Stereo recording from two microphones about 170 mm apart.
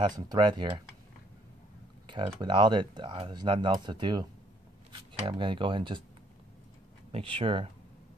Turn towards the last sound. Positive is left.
turn(degrees=-30)  # may be behind; listen again after turning